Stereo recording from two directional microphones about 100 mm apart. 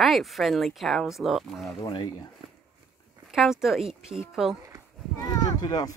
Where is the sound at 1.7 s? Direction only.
35° left (ahead or behind).